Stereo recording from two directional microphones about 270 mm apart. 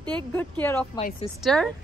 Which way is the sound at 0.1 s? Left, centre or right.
Centre.